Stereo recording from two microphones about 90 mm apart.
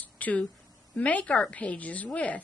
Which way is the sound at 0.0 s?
15° left (ahead or behind).